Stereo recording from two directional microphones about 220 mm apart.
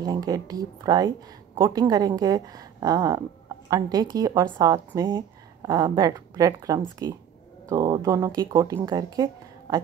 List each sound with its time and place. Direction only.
0.0 s a woman's voice: 15° right (ahead or behind)